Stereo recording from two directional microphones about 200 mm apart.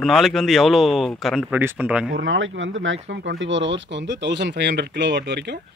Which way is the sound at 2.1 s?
75° right (ahead or behind).